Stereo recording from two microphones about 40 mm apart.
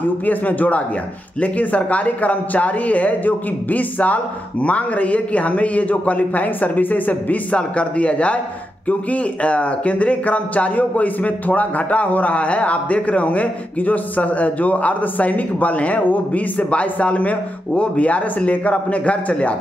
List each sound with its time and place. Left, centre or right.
0.3 s speech: left
7.5 s speech: left